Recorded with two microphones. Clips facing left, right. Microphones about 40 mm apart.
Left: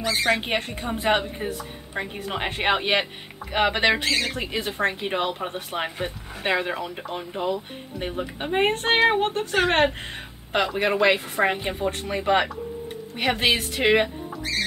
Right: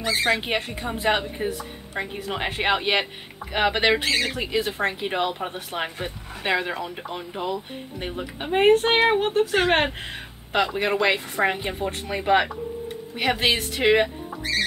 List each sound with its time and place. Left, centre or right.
0.4 s speech: centre
4.0 s speech: right
4.5 s speech: centre